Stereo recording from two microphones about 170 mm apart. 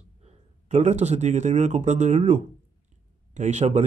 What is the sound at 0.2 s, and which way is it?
Speech, 40° right (ahead or behind).